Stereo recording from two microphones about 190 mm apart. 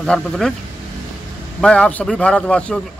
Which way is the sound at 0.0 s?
5° left (ahead or behind).